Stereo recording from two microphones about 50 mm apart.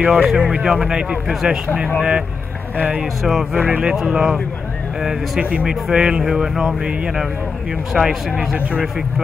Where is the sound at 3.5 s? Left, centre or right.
Right.